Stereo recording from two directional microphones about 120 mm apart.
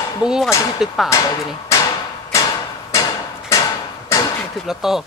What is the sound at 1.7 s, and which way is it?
Hammer, 25° left (ahead or behind).